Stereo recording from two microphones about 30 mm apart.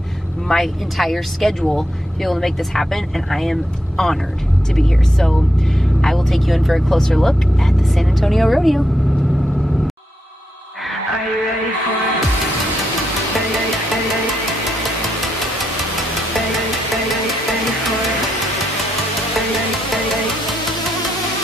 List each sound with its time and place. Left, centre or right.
0.5 s speech: left
0.9 s speech: centre
7.0 s speech: centre